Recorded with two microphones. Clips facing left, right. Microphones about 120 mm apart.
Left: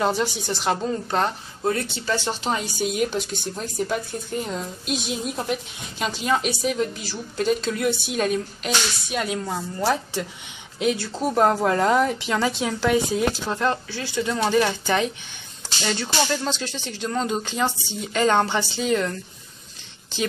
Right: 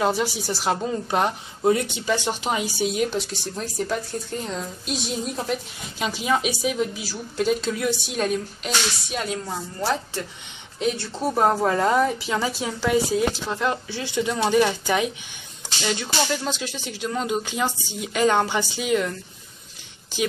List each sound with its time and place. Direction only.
0.0 s speech: 5° right (ahead or behind)
2.8 s a woman's voice: centre (ahead or behind)
13.8 s speech: 20° right (ahead or behind)